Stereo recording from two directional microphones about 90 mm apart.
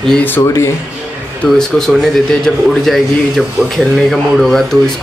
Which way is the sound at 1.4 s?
5° left (ahead or behind).